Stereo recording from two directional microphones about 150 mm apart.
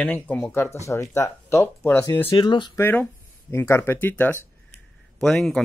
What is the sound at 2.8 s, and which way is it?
Speech, 15° left (ahead or behind).